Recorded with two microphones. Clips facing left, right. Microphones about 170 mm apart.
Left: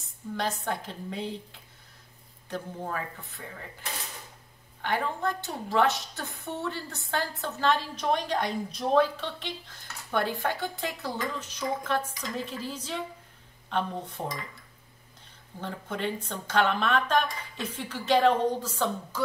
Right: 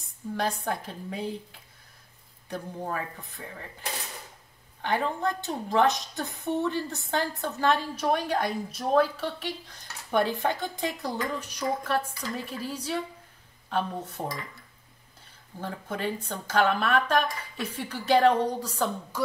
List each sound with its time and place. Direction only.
0.4 s a woman's voice: 10° right (ahead or behind)
4.8 s a woman's voice: 15° right (ahead or behind)
10.4 s a woman's voice: 20° right (ahead or behind)
15.6 s a woman's voice: 10° right (ahead or behind)